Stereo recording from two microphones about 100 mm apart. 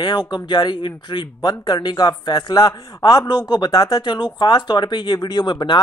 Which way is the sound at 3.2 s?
45° left (ahead or behind).